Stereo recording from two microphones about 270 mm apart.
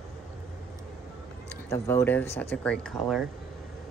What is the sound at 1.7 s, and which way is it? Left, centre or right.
Speech, centre.